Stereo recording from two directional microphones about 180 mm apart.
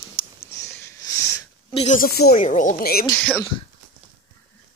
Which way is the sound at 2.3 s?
45° left (ahead or behind).